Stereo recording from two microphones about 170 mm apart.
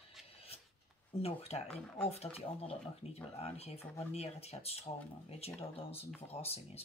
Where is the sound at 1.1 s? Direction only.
35° left (ahead or behind).